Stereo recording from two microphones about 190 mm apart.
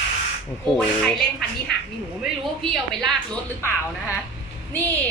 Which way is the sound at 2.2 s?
Centre (ahead or behind).